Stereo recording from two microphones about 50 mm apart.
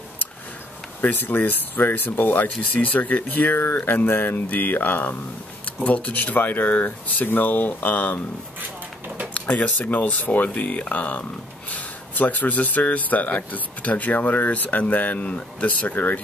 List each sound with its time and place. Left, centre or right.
1.0 s speech: left
9.3 s speech: left